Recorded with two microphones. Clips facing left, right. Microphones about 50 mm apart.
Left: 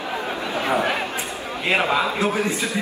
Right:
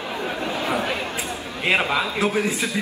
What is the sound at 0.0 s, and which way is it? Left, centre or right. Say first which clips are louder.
Chatter: even; left.